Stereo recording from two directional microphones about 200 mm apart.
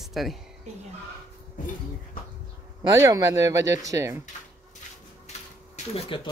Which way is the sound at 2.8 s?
15° right (ahead or behind).